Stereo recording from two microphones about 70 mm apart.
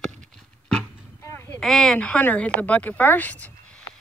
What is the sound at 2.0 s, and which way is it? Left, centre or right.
Speech, left.